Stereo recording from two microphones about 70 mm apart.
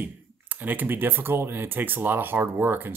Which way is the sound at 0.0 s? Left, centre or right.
Right.